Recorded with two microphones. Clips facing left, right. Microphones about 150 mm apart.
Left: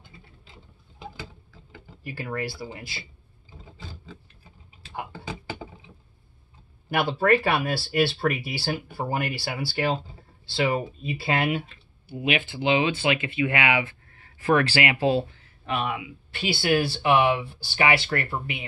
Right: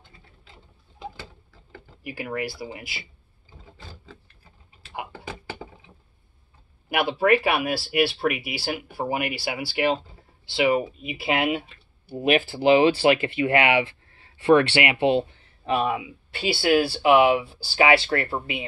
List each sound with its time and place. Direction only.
2.0 s speech: 15° right (ahead or behind)
6.9 s speech: 15° right (ahead or behind)
12.1 s speech: 35° right (ahead or behind)
16.9 s speech: 15° right (ahead or behind)
17.4 s speech: 25° right (ahead or behind)